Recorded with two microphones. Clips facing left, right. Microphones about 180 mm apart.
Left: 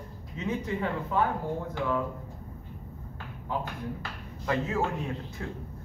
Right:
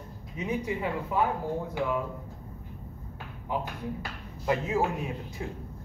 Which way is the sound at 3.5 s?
15° right (ahead or behind).